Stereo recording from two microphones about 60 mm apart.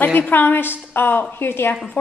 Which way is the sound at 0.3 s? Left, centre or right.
Left.